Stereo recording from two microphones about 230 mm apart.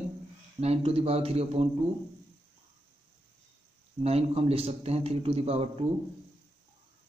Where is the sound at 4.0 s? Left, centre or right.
Right.